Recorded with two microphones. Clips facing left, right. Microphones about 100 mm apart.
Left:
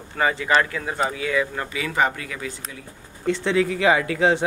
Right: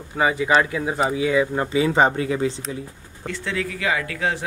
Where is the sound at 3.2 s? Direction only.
25° left (ahead or behind).